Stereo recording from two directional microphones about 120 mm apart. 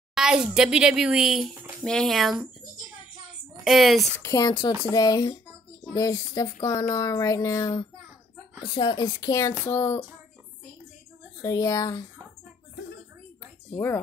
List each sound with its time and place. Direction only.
0.1 s a woman's voice: 5° right (ahead or behind)
3.6 s a woman's voice: centre (ahead or behind)
4.2 s speech: 25° left (ahead or behind)
4.5 s speech: 35° left (ahead or behind)
8.6 s speech: 40° left (ahead or behind); by 10.0 s 20° left (ahead or behind)
11.4 s speech: 30° left (ahead or behind)